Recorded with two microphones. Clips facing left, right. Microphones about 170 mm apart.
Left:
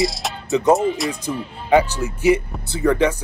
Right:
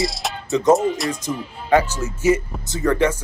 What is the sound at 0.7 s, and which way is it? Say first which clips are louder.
Speech: even; centre (ahead or behind).